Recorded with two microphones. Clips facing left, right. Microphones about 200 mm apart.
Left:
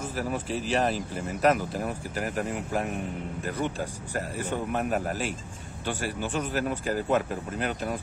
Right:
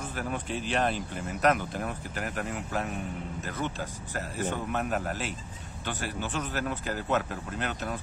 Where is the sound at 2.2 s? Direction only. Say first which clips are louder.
Left 4 dB; 40° left (ahead or behind).